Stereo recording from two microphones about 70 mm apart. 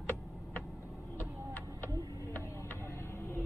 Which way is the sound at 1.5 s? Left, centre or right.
Left.